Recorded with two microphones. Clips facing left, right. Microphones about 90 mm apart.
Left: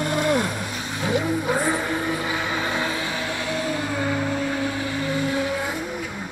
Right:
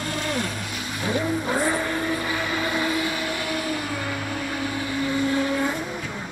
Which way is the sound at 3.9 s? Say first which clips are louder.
Left 5 dB; 10° left (ahead or behind).